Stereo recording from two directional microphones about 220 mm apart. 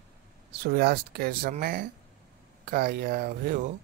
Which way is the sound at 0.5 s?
45° right (ahead or behind).